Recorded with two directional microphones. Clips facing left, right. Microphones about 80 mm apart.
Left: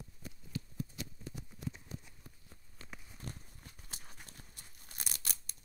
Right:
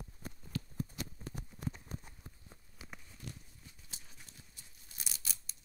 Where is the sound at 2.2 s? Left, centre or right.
Centre.